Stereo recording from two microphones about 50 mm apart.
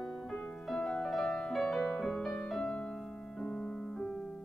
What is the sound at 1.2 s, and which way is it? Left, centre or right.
Music, left.